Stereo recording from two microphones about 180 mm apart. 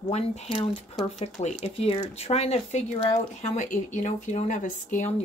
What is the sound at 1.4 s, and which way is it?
Speech, 35° left (ahead or behind).